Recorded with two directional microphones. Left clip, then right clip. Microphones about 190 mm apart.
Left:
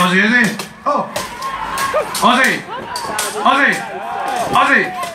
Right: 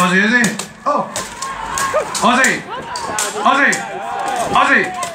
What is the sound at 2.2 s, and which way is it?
Speech, 35° left (ahead or behind).